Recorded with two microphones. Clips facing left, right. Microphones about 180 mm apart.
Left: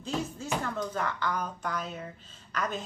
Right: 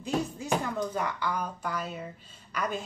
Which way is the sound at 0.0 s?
15° right (ahead or behind).